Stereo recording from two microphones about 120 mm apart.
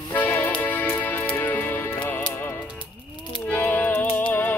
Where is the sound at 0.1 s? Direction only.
15° left (ahead or behind).